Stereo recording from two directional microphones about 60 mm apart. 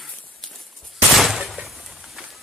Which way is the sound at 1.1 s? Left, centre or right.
Centre.